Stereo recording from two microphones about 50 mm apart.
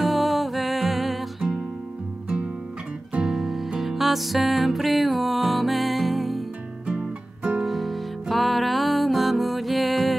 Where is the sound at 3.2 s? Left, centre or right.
Centre.